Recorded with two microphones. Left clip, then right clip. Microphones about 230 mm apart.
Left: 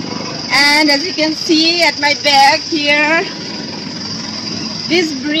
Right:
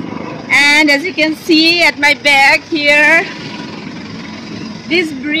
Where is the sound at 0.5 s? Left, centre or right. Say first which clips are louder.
Right 2 dB; right.